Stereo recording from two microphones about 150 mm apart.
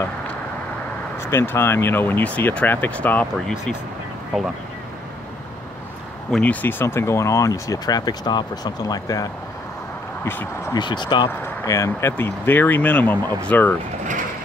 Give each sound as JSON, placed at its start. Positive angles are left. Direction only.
{"t": 1.1, "sound": "speech", "side_deg": 15}
{"t": 6.3, "sound": "speech", "side_deg": 10}
{"t": 10.7, "sound": "speech", "side_deg": 30}
{"t": 11.2, "sound": "speech", "side_deg": 20}